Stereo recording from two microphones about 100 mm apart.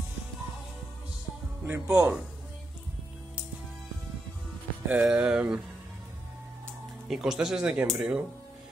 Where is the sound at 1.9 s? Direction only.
10° right (ahead or behind).